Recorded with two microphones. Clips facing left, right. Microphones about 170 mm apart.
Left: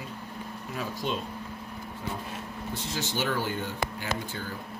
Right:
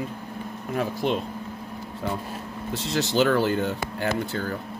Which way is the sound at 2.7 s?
80° right.